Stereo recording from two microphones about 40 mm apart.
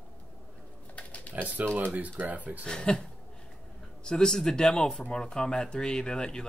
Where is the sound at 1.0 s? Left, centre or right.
Left.